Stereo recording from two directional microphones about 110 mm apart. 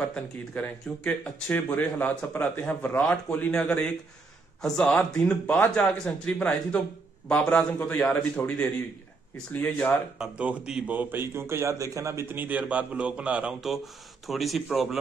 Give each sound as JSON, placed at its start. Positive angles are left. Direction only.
{"t": 0.1, "sound": "speech", "side_deg": 10}
{"t": 10.1, "sound": "a man's voice", "side_deg": -10}